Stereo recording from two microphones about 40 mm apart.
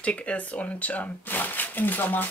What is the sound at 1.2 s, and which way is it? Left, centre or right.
Speech, left.